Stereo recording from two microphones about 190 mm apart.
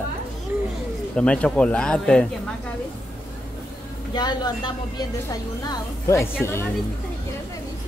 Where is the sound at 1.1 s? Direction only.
5° left (ahead or behind).